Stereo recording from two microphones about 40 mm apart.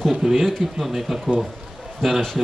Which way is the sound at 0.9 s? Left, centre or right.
Centre.